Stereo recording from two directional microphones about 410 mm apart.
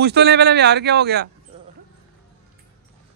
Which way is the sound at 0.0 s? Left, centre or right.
Right.